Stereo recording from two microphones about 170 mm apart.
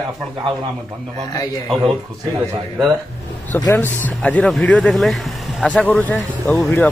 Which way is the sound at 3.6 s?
10° left (ahead or behind).